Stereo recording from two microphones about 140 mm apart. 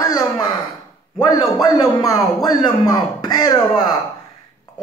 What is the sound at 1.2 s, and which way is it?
A man's voice, 30° left (ahead or behind).